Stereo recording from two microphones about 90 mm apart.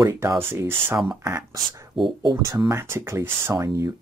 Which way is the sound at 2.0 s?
55° right (ahead or behind).